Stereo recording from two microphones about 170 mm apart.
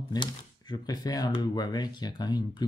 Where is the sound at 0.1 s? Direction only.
25° left (ahead or behind).